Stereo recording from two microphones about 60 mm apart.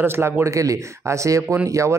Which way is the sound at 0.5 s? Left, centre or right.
Right.